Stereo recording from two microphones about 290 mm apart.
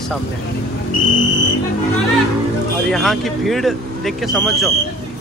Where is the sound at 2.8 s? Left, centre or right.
Centre.